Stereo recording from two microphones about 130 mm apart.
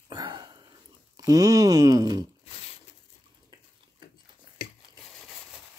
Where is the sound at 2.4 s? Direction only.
50° left (ahead or behind).